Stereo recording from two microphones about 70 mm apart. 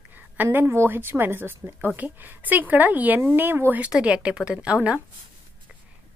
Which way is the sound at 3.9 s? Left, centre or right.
Centre.